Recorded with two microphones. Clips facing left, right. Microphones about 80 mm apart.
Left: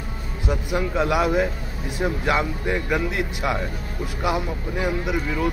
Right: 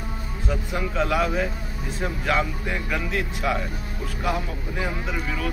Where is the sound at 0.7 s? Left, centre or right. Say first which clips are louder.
Left 2 dB; centre.